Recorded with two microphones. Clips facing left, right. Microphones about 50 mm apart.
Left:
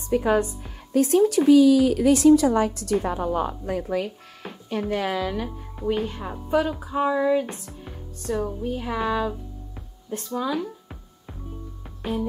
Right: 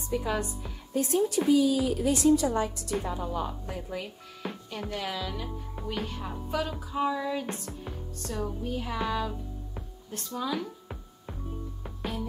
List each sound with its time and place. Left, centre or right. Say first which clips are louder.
0.1 s a woman's voice: left 9 dB; left
0.9 s a woman's voice: left 8 dB; left
4.4 s speech: left 7 dB; left
5.9 s speech: left 9 dB; left
7.6 s speech: right 1 dB; centre
10.4 s music: left 2 dB; centre
12.0 s music: left 7 dB; centre